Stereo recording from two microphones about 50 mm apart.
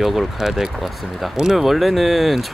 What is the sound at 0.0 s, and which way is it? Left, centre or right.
Speech, centre.